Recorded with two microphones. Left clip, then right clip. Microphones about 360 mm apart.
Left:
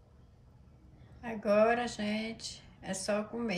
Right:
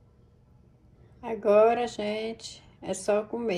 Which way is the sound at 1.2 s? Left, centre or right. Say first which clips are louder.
Right 7 dB; centre.